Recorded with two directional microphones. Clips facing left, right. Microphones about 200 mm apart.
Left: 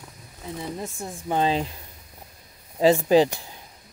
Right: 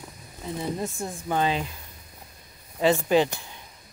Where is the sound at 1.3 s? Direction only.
30° left (ahead or behind).